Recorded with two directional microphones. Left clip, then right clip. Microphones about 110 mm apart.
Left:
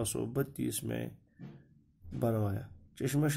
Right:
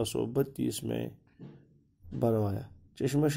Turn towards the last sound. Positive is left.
turn(degrees=-25)  # may be behind; listen again after turning